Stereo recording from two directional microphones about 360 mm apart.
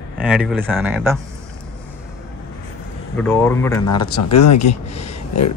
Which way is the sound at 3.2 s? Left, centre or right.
Centre.